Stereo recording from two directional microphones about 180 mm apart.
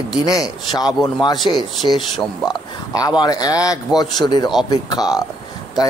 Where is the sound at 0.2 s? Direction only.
20° left (ahead or behind).